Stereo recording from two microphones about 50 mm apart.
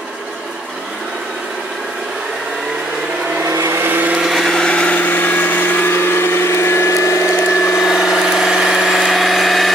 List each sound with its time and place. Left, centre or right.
3.6 s vehicle: right
4.2 s blender: centre
4.5 s a sound: centre
4.7 s vehicle: left
5.0 s blender: left
5.9 s a sound: left
7.9 s vehicle: centre
8.9 s vehicle: centre